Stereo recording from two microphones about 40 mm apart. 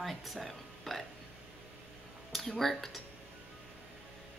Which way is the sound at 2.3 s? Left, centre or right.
Centre.